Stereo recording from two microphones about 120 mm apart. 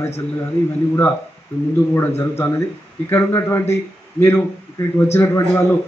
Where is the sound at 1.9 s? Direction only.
20° left (ahead or behind).